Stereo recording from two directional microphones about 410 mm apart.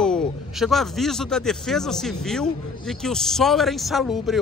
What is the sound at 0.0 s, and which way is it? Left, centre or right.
A man's voice, centre.